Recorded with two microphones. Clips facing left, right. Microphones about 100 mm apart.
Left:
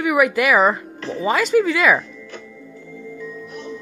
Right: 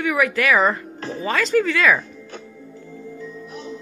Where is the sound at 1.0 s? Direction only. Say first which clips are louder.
Left 3 dB; 45° right (ahead or behind).